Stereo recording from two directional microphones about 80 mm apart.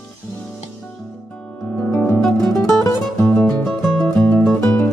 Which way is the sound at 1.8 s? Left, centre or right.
Left.